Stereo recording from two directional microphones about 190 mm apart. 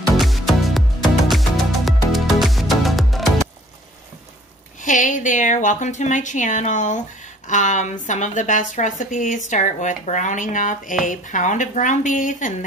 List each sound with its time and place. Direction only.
0.2 s music: centre (ahead or behind)
4.8 s speech: 40° left (ahead or behind)